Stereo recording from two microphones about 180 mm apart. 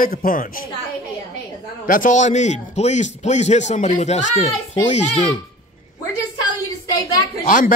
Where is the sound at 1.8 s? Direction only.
50° left (ahead or behind).